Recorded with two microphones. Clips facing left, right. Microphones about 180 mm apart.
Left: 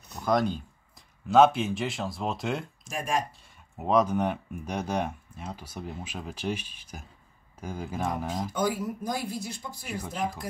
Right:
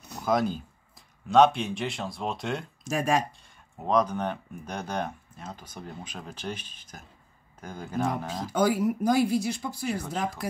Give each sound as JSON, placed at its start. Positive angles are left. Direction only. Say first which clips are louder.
{"t": 0.2, "sound": "speech", "louder": "even", "side_deg": 0}
{"t": 2.8, "sound": "speech", "louder": "right 5 dB", "side_deg": -70}
{"t": 3.3, "sound": "speech", "louder": "right 1 dB", "side_deg": 5}
{"t": 8.5, "sound": "speech", "louder": "right 7 dB", "side_deg": -75}